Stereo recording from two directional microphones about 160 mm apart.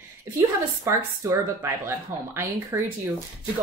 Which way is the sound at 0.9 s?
15° right (ahead or behind).